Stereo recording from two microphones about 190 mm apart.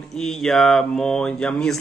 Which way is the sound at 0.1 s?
Centre (ahead or behind).